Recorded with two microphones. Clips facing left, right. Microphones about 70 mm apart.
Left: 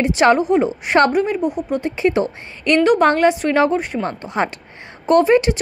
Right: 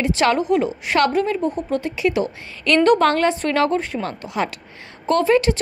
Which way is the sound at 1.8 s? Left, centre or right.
Left.